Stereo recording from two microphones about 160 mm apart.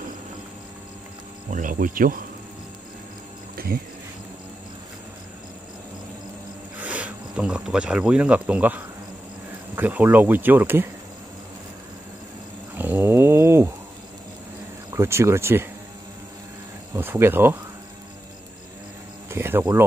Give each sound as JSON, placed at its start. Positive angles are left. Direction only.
{"t": 1.5, "sound": "speech", "side_deg": -55}
{"t": 3.5, "sound": "a sound", "side_deg": -70}
{"t": 6.8, "sound": "speech", "side_deg": -10}
{"t": 12.7, "sound": "a sound", "side_deg": -10}
{"t": 14.9, "sound": "speech", "side_deg": -15}
{"t": 16.9, "sound": "speech", "side_deg": -15}
{"t": 19.3, "sound": "speech", "side_deg": -15}